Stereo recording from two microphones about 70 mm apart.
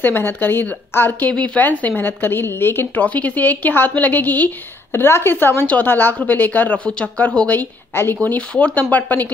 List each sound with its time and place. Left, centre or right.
0.0 s speech: left
4.9 s a woman's voice: left
8.2 s speech: left